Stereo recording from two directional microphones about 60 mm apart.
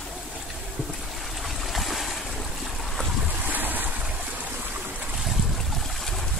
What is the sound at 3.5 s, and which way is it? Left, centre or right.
Waves, right.